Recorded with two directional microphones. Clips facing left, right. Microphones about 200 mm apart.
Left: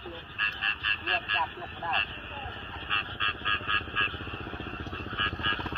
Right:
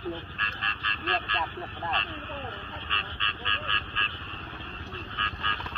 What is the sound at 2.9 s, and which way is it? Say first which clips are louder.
Frog: right 1 dB; 45° left (ahead or behind).